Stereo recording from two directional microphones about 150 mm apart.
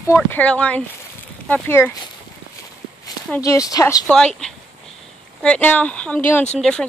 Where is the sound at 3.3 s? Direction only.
20° left (ahead or behind).